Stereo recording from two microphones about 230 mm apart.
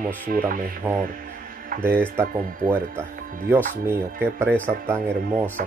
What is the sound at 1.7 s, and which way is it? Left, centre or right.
Tick-tock, right.